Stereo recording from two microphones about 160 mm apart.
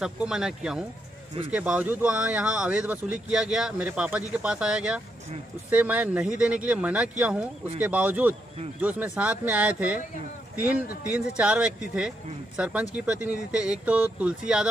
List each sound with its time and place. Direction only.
0.0 s speech: 5° right (ahead or behind)
10.9 s speech: 80° left
11.3 s speech: 5° right (ahead or behind)